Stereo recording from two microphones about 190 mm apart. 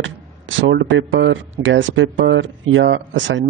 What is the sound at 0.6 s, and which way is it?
Speech, 80° right.